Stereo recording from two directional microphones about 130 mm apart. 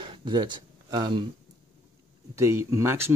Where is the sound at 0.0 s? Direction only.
40° right (ahead or behind).